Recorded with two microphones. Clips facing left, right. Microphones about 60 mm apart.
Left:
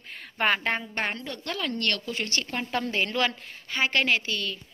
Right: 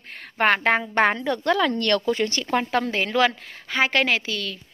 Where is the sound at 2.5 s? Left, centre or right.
Right.